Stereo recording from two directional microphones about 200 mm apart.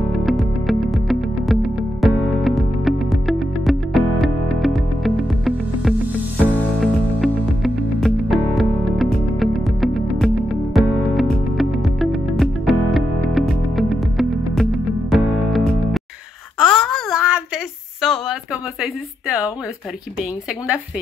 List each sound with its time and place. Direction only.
0.2 s music: centre (ahead or behind)
16.6 s wail: 5° left (ahead or behind)
18.0 s a sound: centre (ahead or behind)